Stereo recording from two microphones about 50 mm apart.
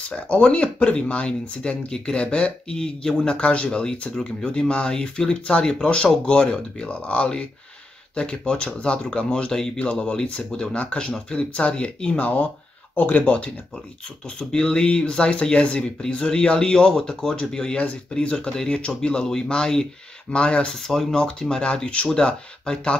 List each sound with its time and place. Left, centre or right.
0.1 s speech: left
3.3 s speech: left
12.2 s speech: left
14.5 s speech: centre